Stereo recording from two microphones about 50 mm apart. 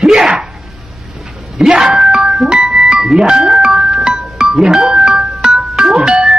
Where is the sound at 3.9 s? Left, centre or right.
Centre.